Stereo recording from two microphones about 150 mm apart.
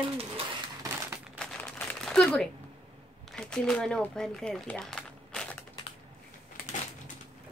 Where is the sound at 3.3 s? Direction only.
5° left (ahead or behind).